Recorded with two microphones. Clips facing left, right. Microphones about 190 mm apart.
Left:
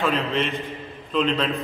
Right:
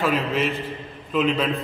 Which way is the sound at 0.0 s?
5° right (ahead or behind).